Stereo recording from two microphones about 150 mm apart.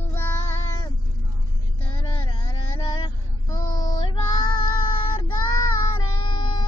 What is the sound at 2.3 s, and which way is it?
Child singing, 30° left (ahead or behind).